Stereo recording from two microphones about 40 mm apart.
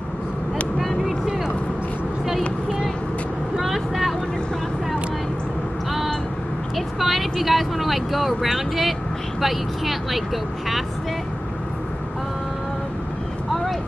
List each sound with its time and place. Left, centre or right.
0.7 s vehicle: centre
3.5 s vehicle: centre
7.0 s vehicle: centre
9.4 s speech: centre